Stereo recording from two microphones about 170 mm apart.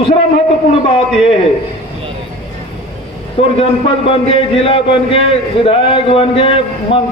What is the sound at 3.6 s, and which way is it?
A man's voice, 35° left (ahead or behind).